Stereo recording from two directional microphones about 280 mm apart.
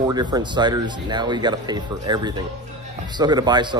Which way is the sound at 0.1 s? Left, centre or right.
Centre.